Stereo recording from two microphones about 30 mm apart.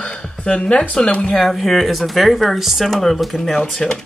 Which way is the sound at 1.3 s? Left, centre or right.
Centre.